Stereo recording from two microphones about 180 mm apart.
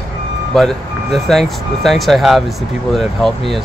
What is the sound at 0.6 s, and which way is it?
Speech, centre (ahead or behind).